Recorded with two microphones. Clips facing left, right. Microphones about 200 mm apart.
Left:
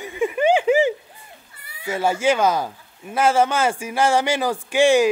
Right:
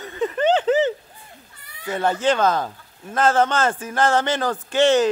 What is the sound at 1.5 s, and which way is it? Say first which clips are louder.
A man's voice: left 1 dB; 10° left (ahead or behind).